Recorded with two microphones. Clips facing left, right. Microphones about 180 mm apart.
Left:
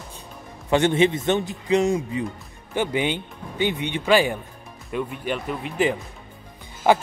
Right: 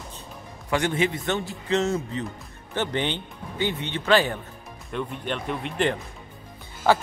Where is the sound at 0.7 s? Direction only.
25° left (ahead or behind); by 5.9 s 5° left (ahead or behind).